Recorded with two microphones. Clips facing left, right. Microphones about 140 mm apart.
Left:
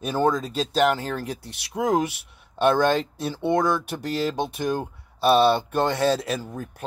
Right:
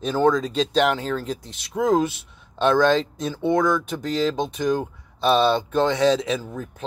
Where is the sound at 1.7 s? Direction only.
10° left (ahead or behind).